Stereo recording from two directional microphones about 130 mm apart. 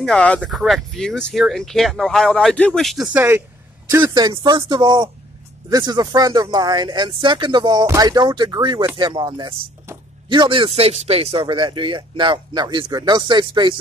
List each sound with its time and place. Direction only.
0.0 s speech: 10° left (ahead or behind)
3.1 s speech: 15° right (ahead or behind)
3.9 s speech: 30° right (ahead or behind)